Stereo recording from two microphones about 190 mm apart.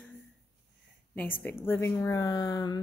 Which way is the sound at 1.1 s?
10° left (ahead or behind).